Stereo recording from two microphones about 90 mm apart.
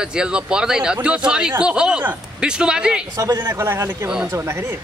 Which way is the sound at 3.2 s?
30° right (ahead or behind).